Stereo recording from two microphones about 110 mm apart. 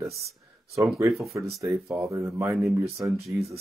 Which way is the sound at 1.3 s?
30° right (ahead or behind).